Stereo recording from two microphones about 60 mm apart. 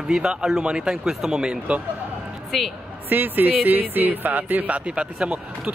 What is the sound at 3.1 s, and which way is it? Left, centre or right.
Speech, right.